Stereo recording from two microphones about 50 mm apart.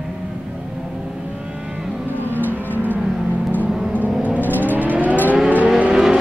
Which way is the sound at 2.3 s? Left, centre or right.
Left.